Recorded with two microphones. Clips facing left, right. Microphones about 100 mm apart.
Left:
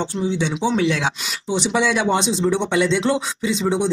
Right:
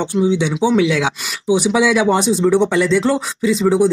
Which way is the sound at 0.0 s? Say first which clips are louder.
Right 6 dB; 20° right (ahead or behind).